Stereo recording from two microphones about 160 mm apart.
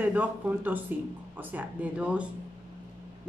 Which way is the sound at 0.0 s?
10° right (ahead or behind).